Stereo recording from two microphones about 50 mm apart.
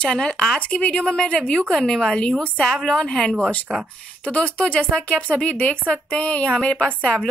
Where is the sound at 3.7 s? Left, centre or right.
Centre.